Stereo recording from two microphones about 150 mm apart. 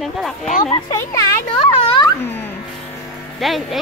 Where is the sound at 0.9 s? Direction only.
20° left (ahead or behind).